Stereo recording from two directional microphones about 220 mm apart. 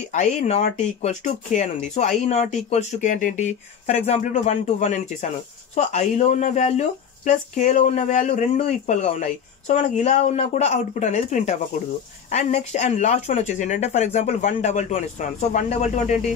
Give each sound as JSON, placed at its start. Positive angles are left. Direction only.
{"t": 0.1, "sound": "speech", "side_deg": 30}